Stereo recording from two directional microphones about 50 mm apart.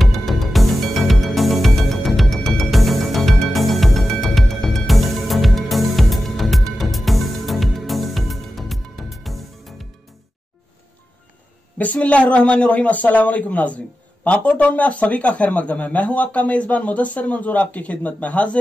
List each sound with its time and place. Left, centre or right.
0.0 s music: centre
11.8 s a man's voice: left